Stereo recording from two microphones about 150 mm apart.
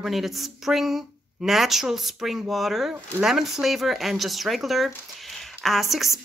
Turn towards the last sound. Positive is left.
turn(degrees=0)  # may be behind; listen again after turning